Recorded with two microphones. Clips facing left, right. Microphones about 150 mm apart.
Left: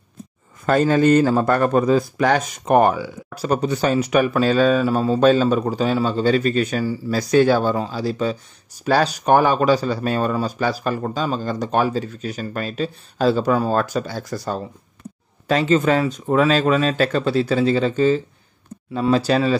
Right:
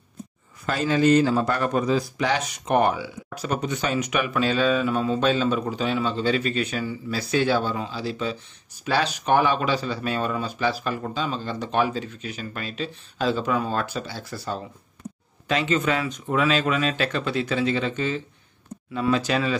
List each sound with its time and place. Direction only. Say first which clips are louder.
0.7 s a man's voice: left 5 dB; 50° left (ahead or behind); by 19.5 s 35° left (ahead or behind)